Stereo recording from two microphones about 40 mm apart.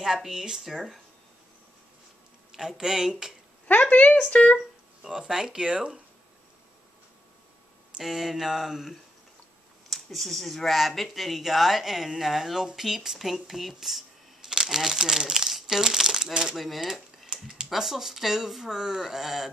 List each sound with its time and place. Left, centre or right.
0.0 s speech: centre
2.5 s speech: centre
3.8 s a woman's voice: left
5.3 s speech: centre
5.7 s speech: right
8.0 s speech: centre
9.8 s speech: centre
14.5 s crumpling: centre
14.8 s speech: centre
17.3 s typing: centre
17.6 s speech: centre